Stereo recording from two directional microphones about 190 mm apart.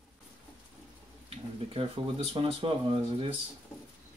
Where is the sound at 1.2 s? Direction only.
30° right (ahead or behind).